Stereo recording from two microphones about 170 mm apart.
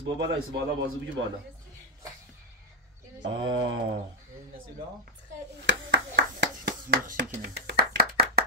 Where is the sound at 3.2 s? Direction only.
90° right.